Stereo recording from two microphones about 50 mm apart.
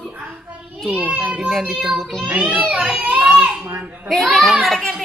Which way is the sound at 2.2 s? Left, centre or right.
Right.